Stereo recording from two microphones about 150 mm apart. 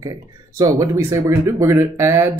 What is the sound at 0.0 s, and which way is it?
Speech, 25° right (ahead or behind).